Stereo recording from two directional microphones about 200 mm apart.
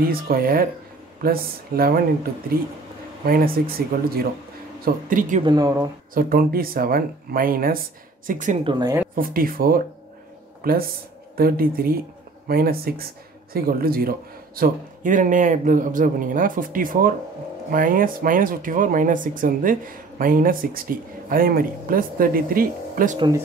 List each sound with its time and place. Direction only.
0.1 s speech: 50° right (ahead or behind)
3.3 s speech: 50° right (ahead or behind)
5.4 s speech: 20° right (ahead or behind)
6.1 s speech: 45° right (ahead or behind)
8.6 s speech: 20° right (ahead or behind)
9.1 s speech: 45° right (ahead or behind)
23.1 s speech: 20° right (ahead or behind)